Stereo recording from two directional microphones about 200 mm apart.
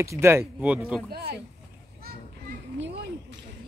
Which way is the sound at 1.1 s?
50° right (ahead or behind).